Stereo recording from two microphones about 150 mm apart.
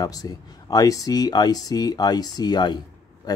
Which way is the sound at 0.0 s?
25° left (ahead or behind).